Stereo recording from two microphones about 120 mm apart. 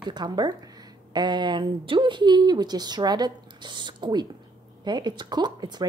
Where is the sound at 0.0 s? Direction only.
35° right (ahead or behind).